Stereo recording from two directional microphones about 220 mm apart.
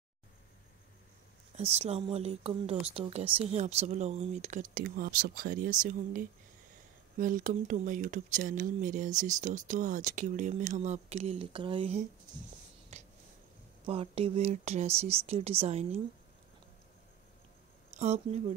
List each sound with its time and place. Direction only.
1.6 s speech: 30° right (ahead or behind)
12.9 s a sound: 30° right (ahead or behind)
13.8 s speech: 25° right (ahead or behind)
17.9 s speech: 30° right (ahead or behind)